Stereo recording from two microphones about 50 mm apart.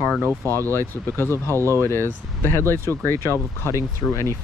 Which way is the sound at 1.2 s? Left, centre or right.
Left.